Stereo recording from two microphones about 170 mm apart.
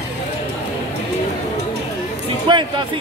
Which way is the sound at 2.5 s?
25° right (ahead or behind).